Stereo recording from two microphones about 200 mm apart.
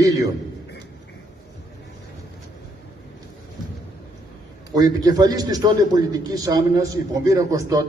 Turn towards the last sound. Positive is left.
turn(degrees=-15)  # may be behind; listen again after turning